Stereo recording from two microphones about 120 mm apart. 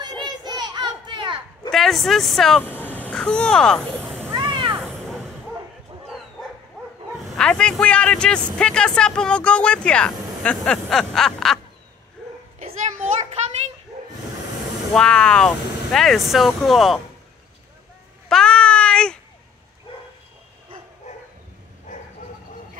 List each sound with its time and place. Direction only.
0.3 s a sound: 35° right (ahead or behind)
1.7 s speech: centre (ahead or behind)
2.6 s speech: 15° left (ahead or behind)
4.3 s cat: 45° right (ahead or behind)
4.8 s a sound: centre (ahead or behind)
7.2 s a man's voice: 5° left (ahead or behind)
12.5 s children playing: 80° right
15.0 s speech: 5° left (ahead or behind)
18.3 s a sound: 5° left (ahead or behind)
21.9 s bow-wow: 90° left